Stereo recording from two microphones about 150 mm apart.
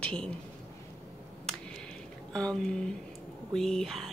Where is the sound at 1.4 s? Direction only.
5° left (ahead or behind).